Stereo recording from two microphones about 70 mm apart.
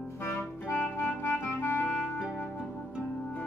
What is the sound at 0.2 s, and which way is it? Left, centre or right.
Clarinet, left.